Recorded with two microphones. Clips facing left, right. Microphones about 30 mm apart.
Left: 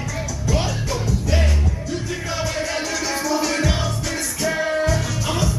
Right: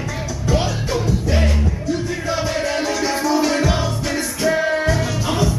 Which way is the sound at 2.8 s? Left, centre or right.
Right.